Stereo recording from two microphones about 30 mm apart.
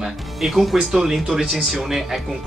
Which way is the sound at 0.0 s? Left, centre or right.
Centre.